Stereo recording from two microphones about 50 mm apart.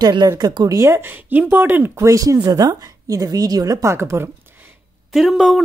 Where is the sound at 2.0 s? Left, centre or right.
Right.